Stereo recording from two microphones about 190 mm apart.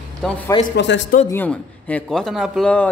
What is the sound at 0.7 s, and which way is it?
Speech, 65° left (ahead or behind).